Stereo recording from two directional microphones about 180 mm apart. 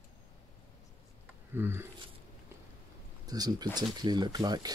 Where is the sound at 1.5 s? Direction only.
15° right (ahead or behind).